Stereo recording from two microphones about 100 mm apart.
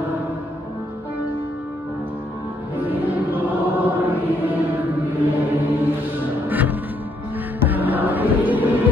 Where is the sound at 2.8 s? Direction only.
20° right (ahead or behind).